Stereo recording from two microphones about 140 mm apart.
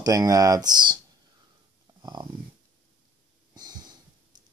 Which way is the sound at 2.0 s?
30° right (ahead or behind).